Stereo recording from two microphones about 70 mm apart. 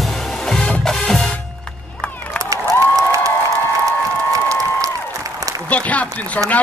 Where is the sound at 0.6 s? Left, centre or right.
Centre.